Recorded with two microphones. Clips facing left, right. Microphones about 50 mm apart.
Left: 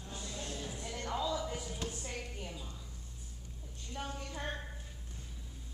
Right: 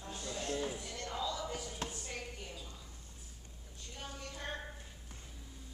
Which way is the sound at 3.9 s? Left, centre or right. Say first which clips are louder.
Left 6 dB; left.